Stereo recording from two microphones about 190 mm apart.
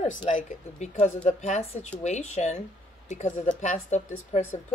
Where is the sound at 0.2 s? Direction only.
40° left (ahead or behind).